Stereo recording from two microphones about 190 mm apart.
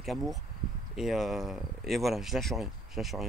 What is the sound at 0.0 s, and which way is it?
Speech, centre (ahead or behind).